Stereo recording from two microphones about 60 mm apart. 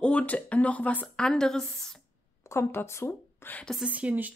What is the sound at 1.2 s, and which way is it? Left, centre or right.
Speech, centre.